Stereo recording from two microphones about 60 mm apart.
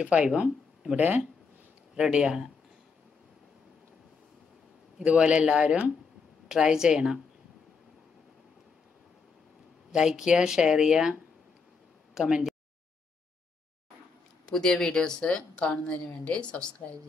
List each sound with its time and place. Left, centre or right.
0.0 s speech: centre
0.9 s speech: right
2.0 s speech: centre
5.0 s speech: centre
9.8 s speech: centre
12.1 s a sound: centre
14.4 s a woman's voice: centre